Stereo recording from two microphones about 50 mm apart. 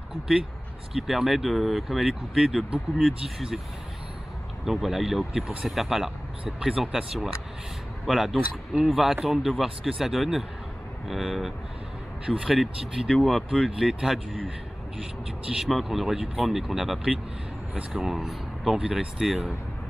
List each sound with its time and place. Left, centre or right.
0.9 s speech: centre
2.3 s speech: centre
3.3 s speech: centre
4.6 s speech: centre
6.4 s speech: centre
15.6 s speech: centre
18.0 s speech: centre